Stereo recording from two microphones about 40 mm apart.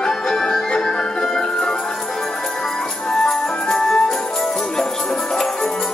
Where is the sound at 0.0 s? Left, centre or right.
Centre.